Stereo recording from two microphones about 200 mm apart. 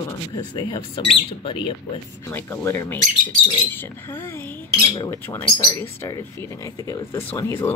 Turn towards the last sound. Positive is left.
turn(degrees=15)  # may be behind; listen again after turning